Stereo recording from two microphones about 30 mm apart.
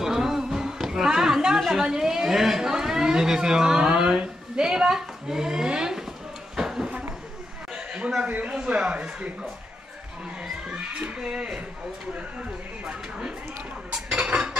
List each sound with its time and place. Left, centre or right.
0.0 s a sound: centre
1.9 s speech: centre
6.5 s a sound: centre
8.6 s speech: right
11.1 s speech: right
14.2 s dishes: right